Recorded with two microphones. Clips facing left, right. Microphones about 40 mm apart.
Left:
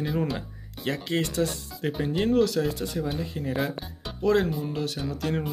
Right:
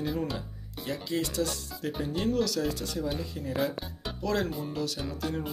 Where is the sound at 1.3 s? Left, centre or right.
Left.